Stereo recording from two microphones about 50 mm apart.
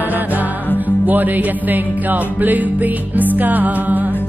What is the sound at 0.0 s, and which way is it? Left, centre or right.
Music, right.